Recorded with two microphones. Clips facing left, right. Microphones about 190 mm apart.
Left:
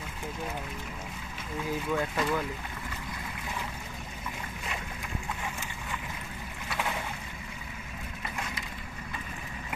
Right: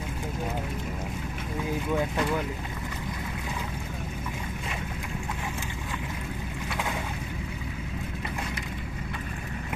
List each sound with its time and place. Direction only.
2.0 s speech: 15° right (ahead or behind)